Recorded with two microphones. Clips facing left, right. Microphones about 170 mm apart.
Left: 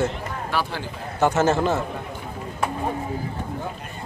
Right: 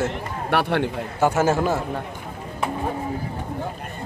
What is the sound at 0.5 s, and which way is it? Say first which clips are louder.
Speech: right 7 dB; 65° right (ahead or behind).